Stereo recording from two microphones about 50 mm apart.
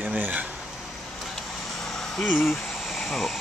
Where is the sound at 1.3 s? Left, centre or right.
Centre.